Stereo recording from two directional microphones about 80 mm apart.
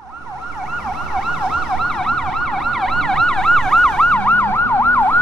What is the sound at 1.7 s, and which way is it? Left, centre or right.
Emergency vehicle, centre.